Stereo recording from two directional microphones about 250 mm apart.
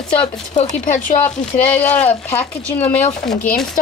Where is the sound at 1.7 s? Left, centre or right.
Centre.